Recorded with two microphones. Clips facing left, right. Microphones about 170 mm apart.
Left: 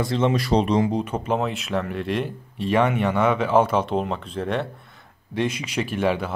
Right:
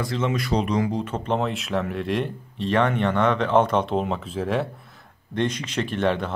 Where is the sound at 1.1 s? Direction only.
5° left (ahead or behind).